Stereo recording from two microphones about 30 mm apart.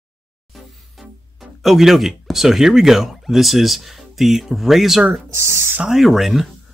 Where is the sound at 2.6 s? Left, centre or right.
Centre.